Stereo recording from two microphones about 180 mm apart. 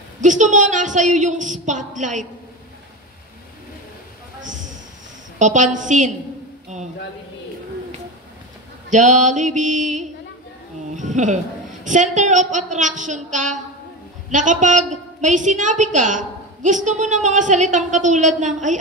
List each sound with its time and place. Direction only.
0.2 s a woman's voice: 45° right (ahead or behind)
5.4 s a woman's voice: 45° right (ahead or behind)
8.9 s a woman's voice: 45° right (ahead or behind)